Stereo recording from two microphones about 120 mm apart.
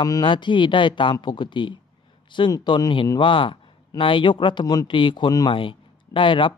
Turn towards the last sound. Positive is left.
turn(degrees=45)  # may be behind; listen again after turning